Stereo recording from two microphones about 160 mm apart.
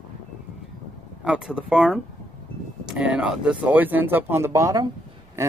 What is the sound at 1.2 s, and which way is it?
Speech, 5° right (ahead or behind).